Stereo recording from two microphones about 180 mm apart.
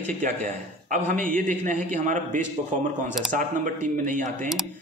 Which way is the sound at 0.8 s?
45° right (ahead or behind).